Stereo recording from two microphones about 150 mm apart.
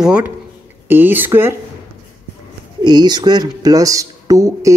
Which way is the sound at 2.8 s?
30° right (ahead or behind).